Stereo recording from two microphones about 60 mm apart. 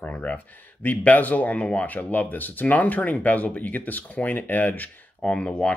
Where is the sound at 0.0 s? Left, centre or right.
Left.